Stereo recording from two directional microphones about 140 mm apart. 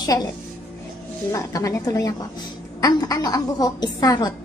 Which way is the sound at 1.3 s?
25° left (ahead or behind).